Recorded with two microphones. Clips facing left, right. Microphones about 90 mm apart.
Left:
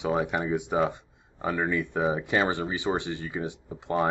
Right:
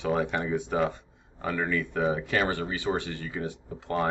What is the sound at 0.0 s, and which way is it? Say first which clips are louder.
Speech: left 1 dB; 15° left (ahead or behind).